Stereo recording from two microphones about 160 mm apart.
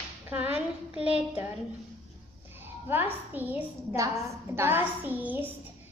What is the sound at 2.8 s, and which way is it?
A woman's voice, 10° right (ahead or behind).